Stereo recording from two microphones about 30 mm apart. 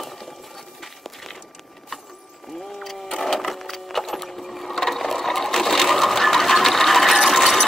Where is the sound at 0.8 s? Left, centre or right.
Centre.